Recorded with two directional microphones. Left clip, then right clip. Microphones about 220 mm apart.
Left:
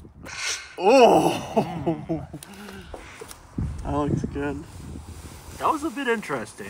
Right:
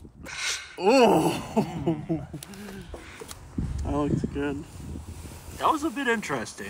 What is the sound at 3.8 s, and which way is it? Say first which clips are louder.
Speech: left 2 dB; 15° left (ahead or behind).